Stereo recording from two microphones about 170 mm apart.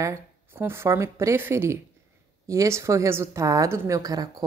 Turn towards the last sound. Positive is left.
turn(degrees=-20)  # may be behind; listen again after turning